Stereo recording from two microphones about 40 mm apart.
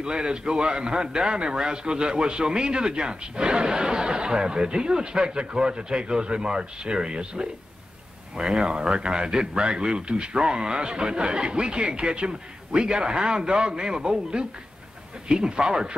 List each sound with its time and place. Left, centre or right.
0.0 s a man's voice: right